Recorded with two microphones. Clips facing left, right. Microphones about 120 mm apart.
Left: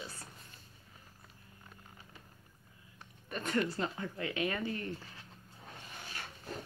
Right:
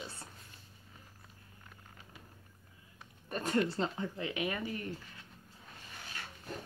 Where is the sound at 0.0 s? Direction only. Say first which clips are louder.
Right 1 dB; 25° right (ahead or behind).